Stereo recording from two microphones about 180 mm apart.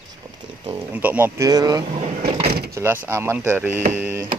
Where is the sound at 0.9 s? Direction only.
10° right (ahead or behind).